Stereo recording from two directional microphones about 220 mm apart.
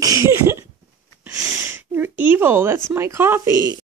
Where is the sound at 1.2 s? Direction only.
10° right (ahead or behind).